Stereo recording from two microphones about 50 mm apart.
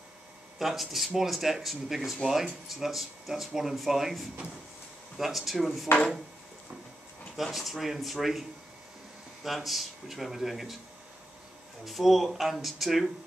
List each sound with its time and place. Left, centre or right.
0.6 s speech: centre
5.1 s speech: centre
7.4 s speech: centre
11.8 s speech: centre